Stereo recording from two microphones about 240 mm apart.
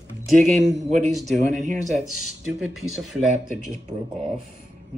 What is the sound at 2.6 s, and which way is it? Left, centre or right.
Speech, centre.